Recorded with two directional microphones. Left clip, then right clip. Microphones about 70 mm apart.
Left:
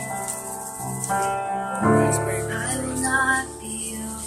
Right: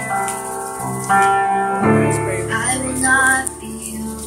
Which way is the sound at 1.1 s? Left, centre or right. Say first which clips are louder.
Right 10 dB; centre.